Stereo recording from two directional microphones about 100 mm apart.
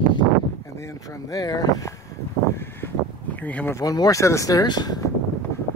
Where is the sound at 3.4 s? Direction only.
15° left (ahead or behind).